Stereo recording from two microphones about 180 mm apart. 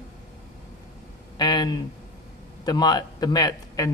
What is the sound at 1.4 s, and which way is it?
A man's voice, 25° left (ahead or behind).